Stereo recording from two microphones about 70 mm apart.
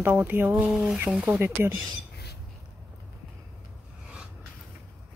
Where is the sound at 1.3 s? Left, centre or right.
Right.